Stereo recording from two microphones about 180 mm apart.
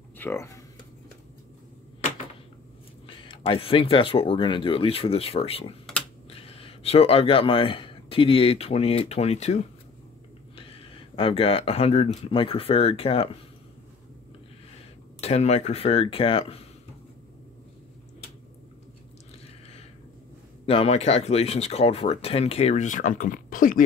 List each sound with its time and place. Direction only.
0.2 s speech: 15° left (ahead or behind)
3.1 s speech: 30° left (ahead or behind)
15.1 s speech: 35° left (ahead or behind)
20.6 s speech: 35° left (ahead or behind); by 23.8 s 50° left (ahead or behind)